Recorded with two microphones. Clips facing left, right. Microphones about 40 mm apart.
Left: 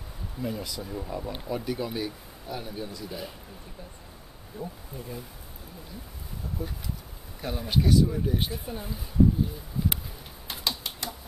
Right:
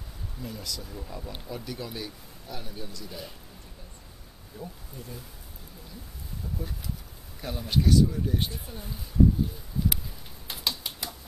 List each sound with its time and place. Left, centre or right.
0.4 s speech: centre
4.6 s speech: centre
7.4 s speech: centre
10.5 s typing: centre